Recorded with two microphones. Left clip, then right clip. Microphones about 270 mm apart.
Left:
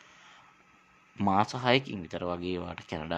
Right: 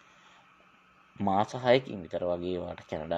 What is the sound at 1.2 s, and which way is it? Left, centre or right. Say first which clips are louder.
Speech: left 1 dB; centre.